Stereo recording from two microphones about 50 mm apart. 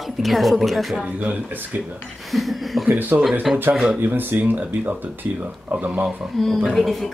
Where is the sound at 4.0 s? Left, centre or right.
Right.